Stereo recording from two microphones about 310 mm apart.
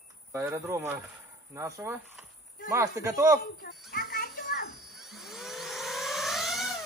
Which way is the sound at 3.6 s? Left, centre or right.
Left.